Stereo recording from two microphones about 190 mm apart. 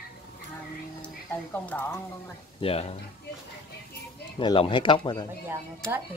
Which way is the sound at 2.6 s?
30° left (ahead or behind).